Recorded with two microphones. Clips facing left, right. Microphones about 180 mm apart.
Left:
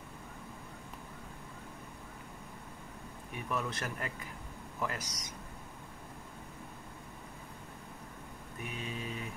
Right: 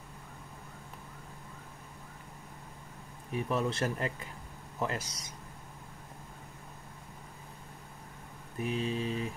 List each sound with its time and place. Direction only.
3.3 s speech: 30° right (ahead or behind)
8.5 s mantra: 30° right (ahead or behind)